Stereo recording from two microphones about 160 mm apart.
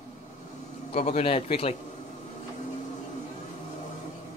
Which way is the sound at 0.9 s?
40° left (ahead or behind).